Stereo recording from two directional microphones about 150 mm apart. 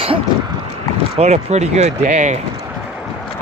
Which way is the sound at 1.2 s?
45° right (ahead or behind).